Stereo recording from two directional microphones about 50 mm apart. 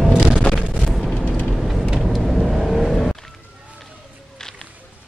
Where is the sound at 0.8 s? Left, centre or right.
Centre.